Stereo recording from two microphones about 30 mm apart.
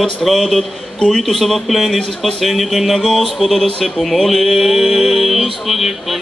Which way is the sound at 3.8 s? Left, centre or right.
Centre.